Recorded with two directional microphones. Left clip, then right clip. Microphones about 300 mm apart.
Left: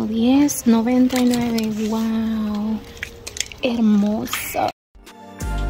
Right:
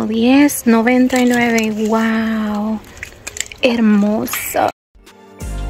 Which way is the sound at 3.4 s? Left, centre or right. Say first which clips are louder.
Right 7 dB; centre.